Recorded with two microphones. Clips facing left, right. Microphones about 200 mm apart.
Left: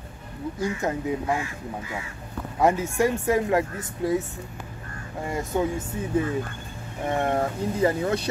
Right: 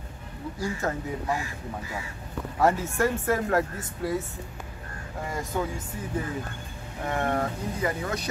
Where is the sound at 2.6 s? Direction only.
20° left (ahead or behind).